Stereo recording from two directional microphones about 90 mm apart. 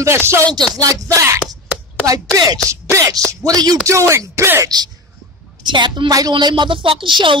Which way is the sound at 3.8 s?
30° right (ahead or behind).